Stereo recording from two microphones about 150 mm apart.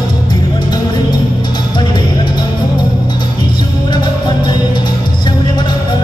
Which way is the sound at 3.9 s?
30° left (ahead or behind).